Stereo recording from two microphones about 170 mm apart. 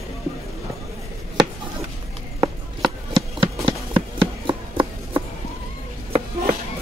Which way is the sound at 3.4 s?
30° right (ahead or behind).